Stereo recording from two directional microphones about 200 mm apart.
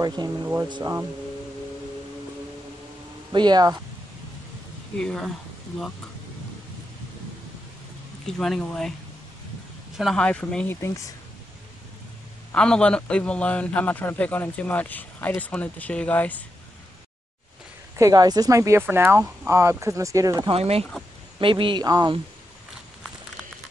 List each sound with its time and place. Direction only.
0.0 s speech: 20° right (ahead or behind)
3.3 s speech: 20° right (ahead or behind)
4.9 s speech: 5° left (ahead or behind)
8.3 s speech: 5° left (ahead or behind)
9.9 s speech: centre (ahead or behind)
12.5 s a man's voice: 5° left (ahead or behind)
17.9 s speech: 15° right (ahead or behind)
20.5 s speech: 30° right (ahead or behind)